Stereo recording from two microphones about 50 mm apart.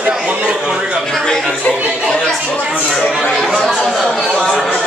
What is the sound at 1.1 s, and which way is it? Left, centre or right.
Speech, centre.